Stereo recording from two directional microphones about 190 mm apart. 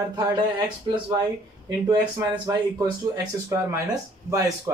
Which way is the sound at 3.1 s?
15° right (ahead or behind).